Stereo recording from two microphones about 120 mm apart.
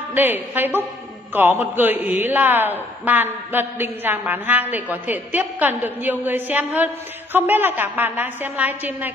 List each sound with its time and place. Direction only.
0.1 s a man's voice: 15° right (ahead or behind)